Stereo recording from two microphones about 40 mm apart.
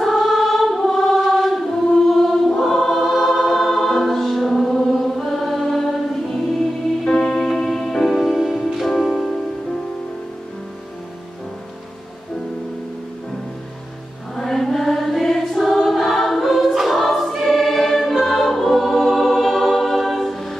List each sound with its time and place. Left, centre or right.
0.0 s choir: centre
1.1 s chant: centre
2.0 s choir: centre
7.1 s music: centre
8.2 s music: centre
8.8 s music: centre
14.3 s chant: centre
15.2 s choir: centre
19.7 s music: centre